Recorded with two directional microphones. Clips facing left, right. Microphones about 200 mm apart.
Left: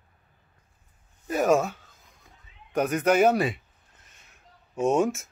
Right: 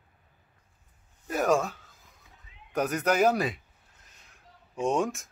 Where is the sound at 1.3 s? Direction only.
5° left (ahead or behind).